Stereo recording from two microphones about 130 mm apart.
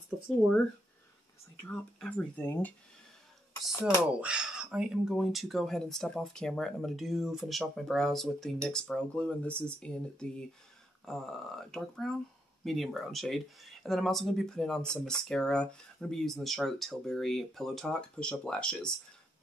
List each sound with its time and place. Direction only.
1.6 s speech: 10° left (ahead or behind)
4.0 s speech: 10° right (ahead or behind)